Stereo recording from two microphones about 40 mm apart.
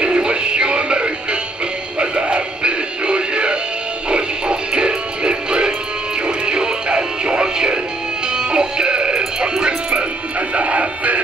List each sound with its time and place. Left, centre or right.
0.0 s music: right
10.5 s music: right